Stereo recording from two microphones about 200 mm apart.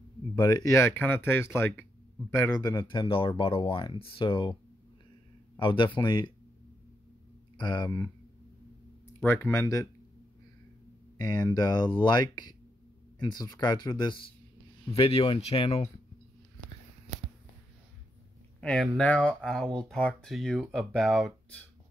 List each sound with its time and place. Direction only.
0.4 s speech: 20° left (ahead or behind)
5.6 s speech: 25° left (ahead or behind)
7.5 s speech: 20° left (ahead or behind)
9.2 s speech: 10° left (ahead or behind)
11.1 s speech: 20° left (ahead or behind)
18.6 s speech: 5° left (ahead or behind)